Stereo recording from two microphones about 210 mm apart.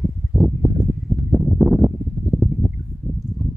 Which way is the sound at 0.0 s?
Centre (ahead or behind).